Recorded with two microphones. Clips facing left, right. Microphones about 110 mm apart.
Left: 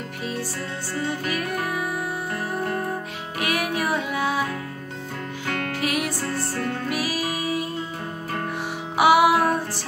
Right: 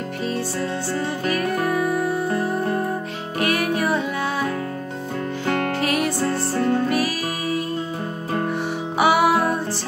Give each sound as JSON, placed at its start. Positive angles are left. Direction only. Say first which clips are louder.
{"t": 1.2, "sound": "music", "louder": "right 5 dB", "side_deg": 10}
{"t": 3.3, "sound": "music", "louder": "right 4 dB", "side_deg": 10}
{"t": 5.8, "sound": "music", "louder": "right 4 dB", "side_deg": 10}
{"t": 6.3, "sound": "music", "louder": "right 5 dB", "side_deg": -20}
{"t": 6.9, "sound": "music", "louder": "right 3 dB", "side_deg": 10}
{"t": 8.9, "sound": "music", "louder": "left 1 dB", "side_deg": 10}